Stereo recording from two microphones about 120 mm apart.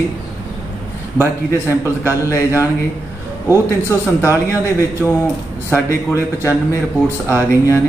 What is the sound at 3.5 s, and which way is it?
Speech, 25° left (ahead or behind).